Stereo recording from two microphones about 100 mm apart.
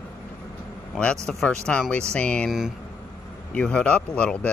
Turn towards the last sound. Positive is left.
turn(degrees=10)  # may be behind; listen again after turning